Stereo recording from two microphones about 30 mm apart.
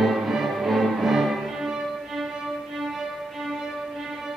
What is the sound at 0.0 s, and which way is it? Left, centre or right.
Music, centre.